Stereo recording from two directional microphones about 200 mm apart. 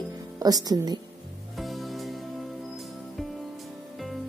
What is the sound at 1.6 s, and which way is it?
Music, centre (ahead or behind).